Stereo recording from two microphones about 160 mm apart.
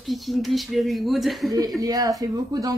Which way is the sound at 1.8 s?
25° right (ahead or behind).